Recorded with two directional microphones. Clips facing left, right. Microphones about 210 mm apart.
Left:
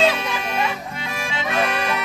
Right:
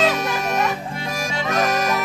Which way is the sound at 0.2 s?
40° right (ahead or behind).